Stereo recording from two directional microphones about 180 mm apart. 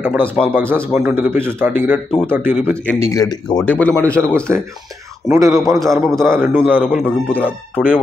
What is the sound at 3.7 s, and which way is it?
A man's voice, 10° left (ahead or behind).